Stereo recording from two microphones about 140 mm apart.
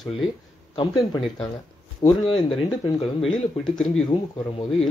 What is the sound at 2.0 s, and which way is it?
Speech, 40° left (ahead or behind).